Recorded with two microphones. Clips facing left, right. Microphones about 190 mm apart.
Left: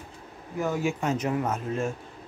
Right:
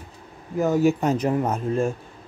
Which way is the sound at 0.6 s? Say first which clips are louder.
Right 8 dB; 40° right (ahead or behind).